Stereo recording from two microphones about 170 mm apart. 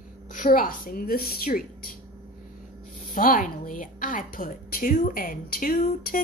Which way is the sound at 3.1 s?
55° left (ahead or behind).